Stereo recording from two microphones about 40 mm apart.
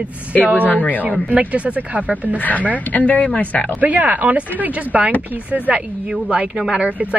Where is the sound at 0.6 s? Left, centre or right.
Left.